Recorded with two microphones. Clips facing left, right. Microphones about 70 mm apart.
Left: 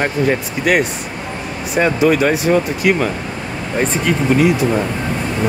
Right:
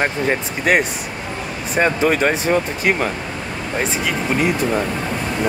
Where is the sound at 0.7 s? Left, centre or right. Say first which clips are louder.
Left 1 dB; right.